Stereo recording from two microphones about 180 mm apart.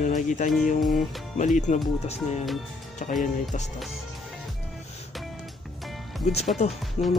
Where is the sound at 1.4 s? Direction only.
40° left (ahead or behind).